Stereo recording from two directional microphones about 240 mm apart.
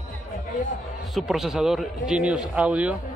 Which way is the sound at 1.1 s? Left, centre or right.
Centre.